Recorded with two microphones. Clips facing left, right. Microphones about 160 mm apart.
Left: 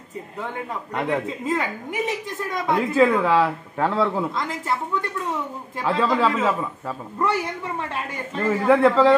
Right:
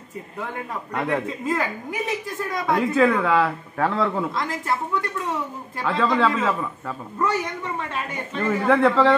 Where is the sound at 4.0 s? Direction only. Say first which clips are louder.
Left 1 dB; 5° left (ahead or behind).